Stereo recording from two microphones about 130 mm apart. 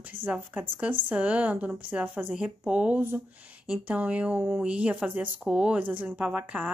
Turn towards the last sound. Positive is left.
turn(degrees=-10)  # may be behind; listen again after turning